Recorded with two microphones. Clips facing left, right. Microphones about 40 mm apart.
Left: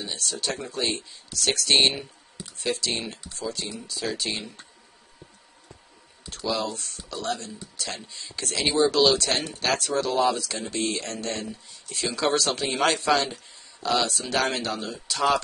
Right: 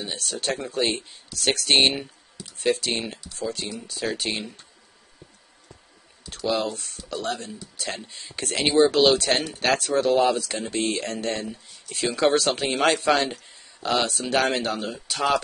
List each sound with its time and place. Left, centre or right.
0.2 s a man's voice: right
2.9 s speech: right
3.3 s a man's voice: right
6.4 s a man's voice: right
10.9 s a man's voice: right